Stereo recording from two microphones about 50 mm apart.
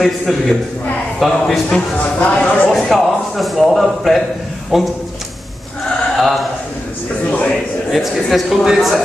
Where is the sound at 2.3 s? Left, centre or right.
Left.